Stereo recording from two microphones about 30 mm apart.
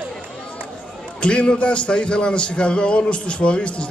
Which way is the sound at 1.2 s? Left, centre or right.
Left.